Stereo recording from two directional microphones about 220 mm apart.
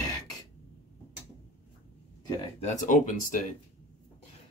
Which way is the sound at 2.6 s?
30° left (ahead or behind).